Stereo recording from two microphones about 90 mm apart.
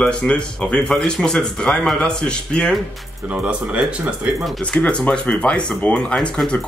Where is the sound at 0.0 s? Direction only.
10° left (ahead or behind).